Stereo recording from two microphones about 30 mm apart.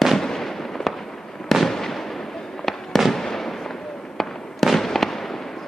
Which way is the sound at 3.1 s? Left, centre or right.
Centre.